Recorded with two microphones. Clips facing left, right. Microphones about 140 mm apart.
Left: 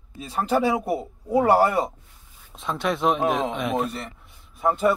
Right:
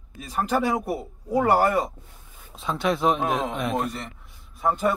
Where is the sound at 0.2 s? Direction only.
30° left (ahead or behind).